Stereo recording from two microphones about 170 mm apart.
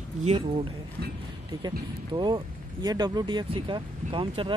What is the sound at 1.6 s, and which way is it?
Speech, 25° right (ahead or behind).